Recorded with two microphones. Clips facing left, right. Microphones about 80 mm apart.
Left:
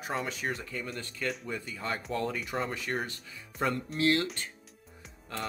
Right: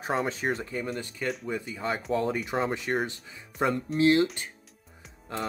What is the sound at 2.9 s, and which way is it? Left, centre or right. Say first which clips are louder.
Speech: right 5 dB; right.